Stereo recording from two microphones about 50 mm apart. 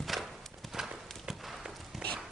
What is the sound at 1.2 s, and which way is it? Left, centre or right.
Clip-clop, centre.